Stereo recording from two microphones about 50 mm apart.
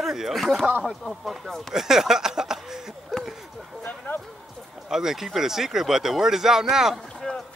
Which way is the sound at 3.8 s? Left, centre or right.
Left.